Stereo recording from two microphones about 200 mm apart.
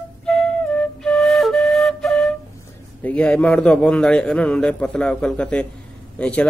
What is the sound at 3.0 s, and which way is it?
Speech, 5° left (ahead or behind).